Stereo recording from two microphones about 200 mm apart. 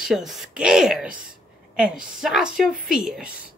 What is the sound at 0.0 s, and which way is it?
Speech, centre (ahead or behind).